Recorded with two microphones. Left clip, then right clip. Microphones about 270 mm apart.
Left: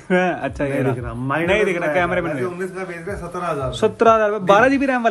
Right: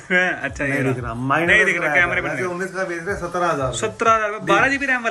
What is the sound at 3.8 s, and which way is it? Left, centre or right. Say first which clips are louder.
Speech: left 5 dB; centre.